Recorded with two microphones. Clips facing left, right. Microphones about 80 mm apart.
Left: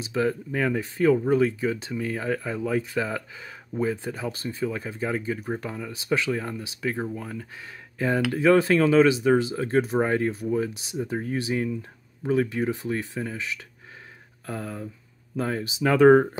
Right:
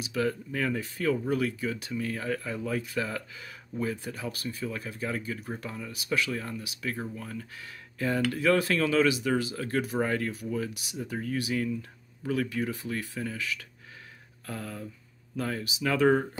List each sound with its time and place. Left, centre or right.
0.0 s speech: left